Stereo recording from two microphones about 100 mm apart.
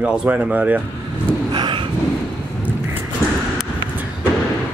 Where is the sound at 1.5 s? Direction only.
50° right (ahead or behind).